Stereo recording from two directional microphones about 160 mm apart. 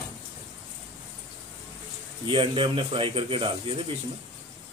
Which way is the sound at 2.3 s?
35° right (ahead or behind).